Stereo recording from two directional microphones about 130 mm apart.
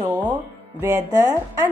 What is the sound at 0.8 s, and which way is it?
Speech, 20° right (ahead or behind).